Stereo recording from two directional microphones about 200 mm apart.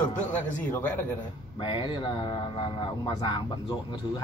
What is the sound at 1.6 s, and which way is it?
A man's voice, 25° left (ahead or behind).